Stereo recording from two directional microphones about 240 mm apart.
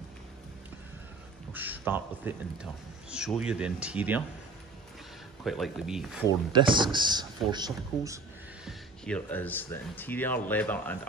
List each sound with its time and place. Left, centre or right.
1.5 s a man's voice: centre
5.4 s a man's voice: centre
6.5 s speech: centre
8.6 s speech: centre